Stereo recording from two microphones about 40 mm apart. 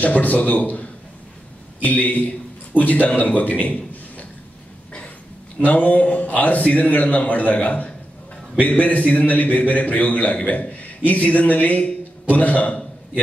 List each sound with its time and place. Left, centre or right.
0.0 s a man's voice: left
5.6 s a man's voice: left